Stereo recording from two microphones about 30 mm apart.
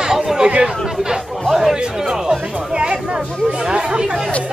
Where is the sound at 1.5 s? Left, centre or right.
Centre.